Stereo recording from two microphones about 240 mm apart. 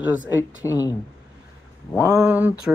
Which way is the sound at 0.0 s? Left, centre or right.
Centre.